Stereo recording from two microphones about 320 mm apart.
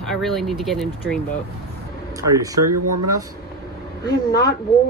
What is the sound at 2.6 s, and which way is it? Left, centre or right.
Speech, right.